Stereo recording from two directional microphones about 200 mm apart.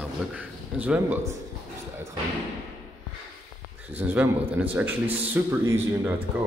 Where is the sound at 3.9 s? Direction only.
10° right (ahead or behind).